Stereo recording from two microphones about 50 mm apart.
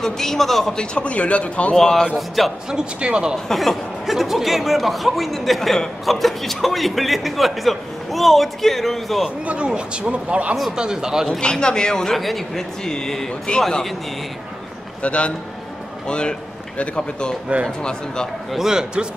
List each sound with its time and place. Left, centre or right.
0.0 s a man's voice: centre
0.7 s a man's voice: left
1.8 s a man's voice: centre
2.1 s speech: centre
2.7 s speech: centre
3.4 s speech: centre
9.5 s speech: right
10.8 s speech: centre
11.2 s a man's voice: centre
15.0 s a man's voice: left
18.5 s speech: centre